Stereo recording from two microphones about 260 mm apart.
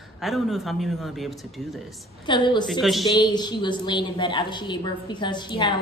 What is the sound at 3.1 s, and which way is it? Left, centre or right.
A woman's voice, centre.